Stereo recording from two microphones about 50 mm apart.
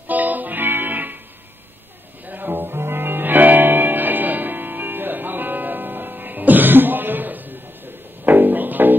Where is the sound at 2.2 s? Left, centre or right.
Right.